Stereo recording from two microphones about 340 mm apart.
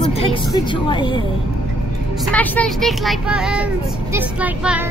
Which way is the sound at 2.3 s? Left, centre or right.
Centre.